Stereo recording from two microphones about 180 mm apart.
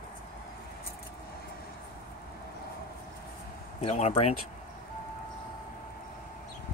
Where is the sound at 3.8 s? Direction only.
35° left (ahead or behind).